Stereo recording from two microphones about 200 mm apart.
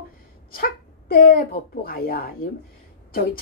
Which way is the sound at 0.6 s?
45° left (ahead or behind).